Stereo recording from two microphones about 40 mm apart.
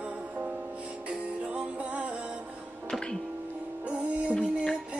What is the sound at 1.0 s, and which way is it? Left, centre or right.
Music, right.